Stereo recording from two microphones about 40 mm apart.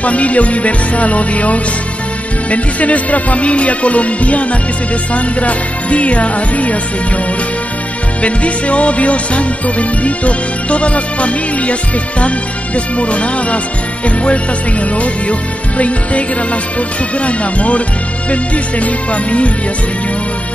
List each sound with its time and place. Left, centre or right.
0.0 s music: left
8.2 s music: left
12.7 s music: left
15.8 s music: left